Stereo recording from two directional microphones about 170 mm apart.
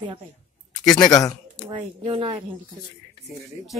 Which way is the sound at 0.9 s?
20° left (ahead or behind).